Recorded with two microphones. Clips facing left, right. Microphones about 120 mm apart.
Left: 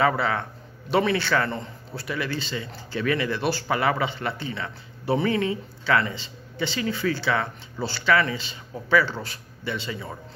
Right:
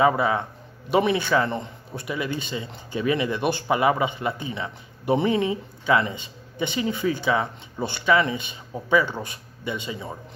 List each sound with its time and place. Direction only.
0.0 s a man's voice: 20° right (ahead or behind)